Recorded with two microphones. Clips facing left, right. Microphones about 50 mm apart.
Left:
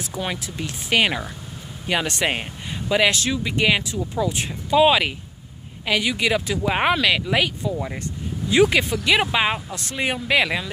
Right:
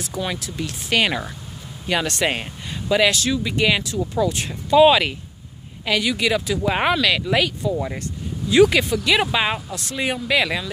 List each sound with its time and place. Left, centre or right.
0.0 s speech: left
5.9 s speech: left
6.6 s speech: centre